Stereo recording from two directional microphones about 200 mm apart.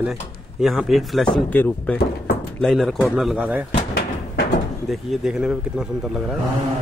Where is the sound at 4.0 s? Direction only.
50° left (ahead or behind).